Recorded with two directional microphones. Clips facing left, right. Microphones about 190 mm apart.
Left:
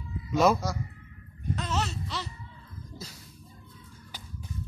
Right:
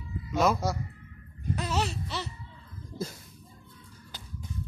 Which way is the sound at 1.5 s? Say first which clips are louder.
Right 1 dB; 10° right (ahead or behind).